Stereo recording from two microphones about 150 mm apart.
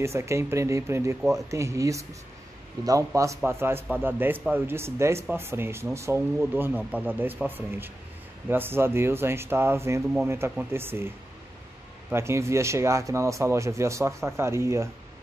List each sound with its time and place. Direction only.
0.0 s speech: 20° right (ahead or behind)
12.1 s speech: 15° right (ahead or behind)